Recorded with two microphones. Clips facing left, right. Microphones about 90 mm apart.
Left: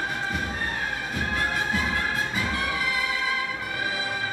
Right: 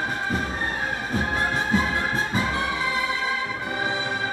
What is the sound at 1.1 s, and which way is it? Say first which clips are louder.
Music: right 3 dB; 25° right (ahead or behind).